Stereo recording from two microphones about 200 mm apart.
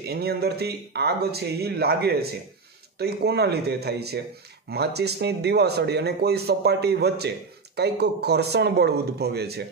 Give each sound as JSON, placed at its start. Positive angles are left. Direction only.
{"t": 0.0, "sound": "speech", "side_deg": -50}